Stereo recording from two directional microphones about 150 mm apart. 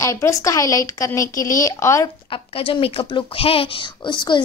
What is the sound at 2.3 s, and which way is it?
Speech, 40° left (ahead or behind).